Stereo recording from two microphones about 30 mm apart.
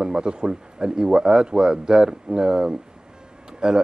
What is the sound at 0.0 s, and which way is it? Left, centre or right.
Speech, right.